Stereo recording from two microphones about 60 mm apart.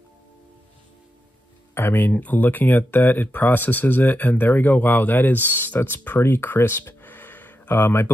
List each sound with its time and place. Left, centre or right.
1.8 s speech: left